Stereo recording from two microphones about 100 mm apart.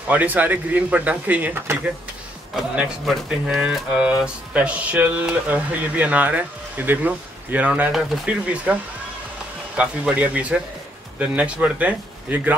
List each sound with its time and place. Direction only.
0.1 s speech: 15° right (ahead or behind)
9.8 s speech: 10° right (ahead or behind)